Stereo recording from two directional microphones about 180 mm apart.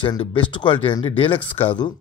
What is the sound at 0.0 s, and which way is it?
Speech, 25° left (ahead or behind).